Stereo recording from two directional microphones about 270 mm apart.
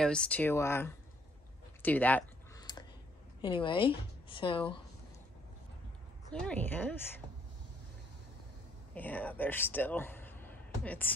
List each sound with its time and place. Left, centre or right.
0.0 s speech: centre
1.8 s a sound: centre
3.3 s a woman's voice: centre
6.3 s a woman's voice: centre
8.9 s a man's voice: centre